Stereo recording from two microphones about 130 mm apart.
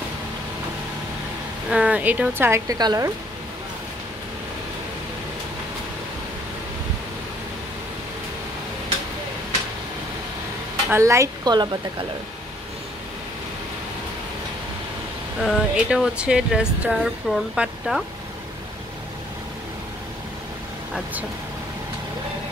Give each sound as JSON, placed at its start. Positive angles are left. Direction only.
{"t": 1.7, "sound": "speech", "side_deg": -10}
{"t": 2.8, "sound": "a woman's voice", "side_deg": -30}
{"t": 10.9, "sound": "a woman's voice", "side_deg": -20}
{"t": 15.4, "sound": "speech", "side_deg": -5}
{"t": 20.9, "sound": "speech", "side_deg": -10}